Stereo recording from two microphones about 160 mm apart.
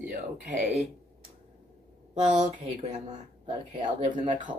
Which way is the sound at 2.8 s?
45° right (ahead or behind).